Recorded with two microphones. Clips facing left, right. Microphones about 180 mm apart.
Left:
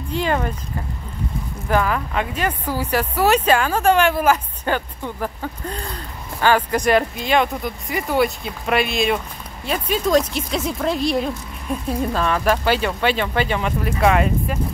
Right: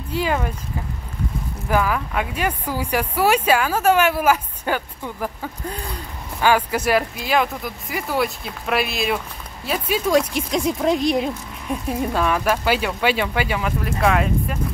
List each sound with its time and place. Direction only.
0.1 s speech: 5° right (ahead or behind)
1.7 s speech: 5° right (ahead or behind)